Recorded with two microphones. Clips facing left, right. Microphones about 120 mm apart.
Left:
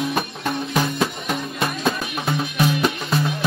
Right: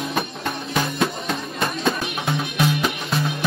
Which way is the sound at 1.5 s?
5° left (ahead or behind).